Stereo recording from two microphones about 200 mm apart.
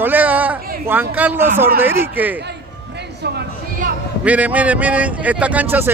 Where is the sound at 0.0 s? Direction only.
10° right (ahead or behind).